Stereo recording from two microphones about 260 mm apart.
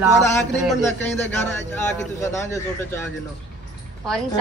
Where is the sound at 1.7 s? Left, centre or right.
Centre.